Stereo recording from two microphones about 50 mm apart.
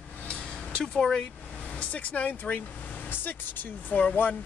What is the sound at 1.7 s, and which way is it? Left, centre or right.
Speech, left.